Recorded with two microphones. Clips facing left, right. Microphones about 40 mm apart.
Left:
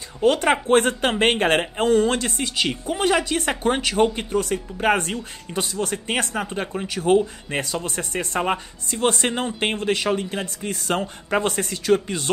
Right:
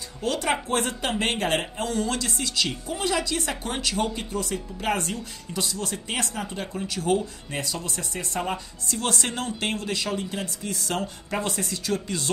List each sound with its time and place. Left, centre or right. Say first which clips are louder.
0.2 s a woman's voice: left 7 dB; left
7.6 s a woman's voice: left 4 dB; left